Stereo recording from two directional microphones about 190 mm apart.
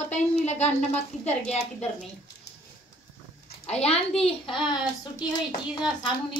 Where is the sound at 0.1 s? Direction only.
35° left (ahead or behind).